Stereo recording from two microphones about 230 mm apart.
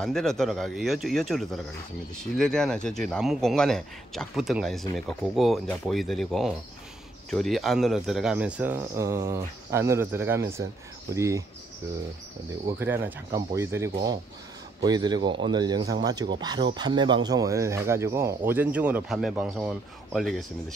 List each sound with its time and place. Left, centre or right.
0.0 s speech: centre
12.7 s speech: centre